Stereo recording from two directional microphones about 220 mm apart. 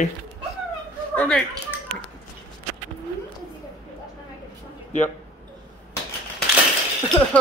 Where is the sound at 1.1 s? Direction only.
5° left (ahead or behind).